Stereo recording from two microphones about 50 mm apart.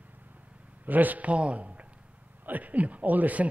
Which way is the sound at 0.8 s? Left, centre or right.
Right.